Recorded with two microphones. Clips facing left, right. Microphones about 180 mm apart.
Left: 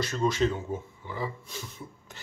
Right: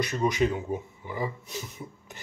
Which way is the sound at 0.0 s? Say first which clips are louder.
Right 1 dB; 15° right (ahead or behind).